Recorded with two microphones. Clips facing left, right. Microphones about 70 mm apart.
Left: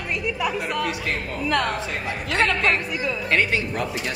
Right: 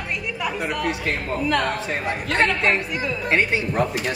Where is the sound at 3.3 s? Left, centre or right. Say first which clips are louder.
Right 1 dB; right.